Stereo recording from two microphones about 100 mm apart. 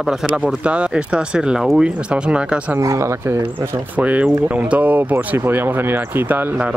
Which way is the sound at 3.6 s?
40° right (ahead or behind).